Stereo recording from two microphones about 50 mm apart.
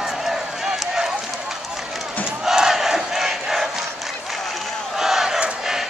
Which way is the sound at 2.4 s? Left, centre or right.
Centre.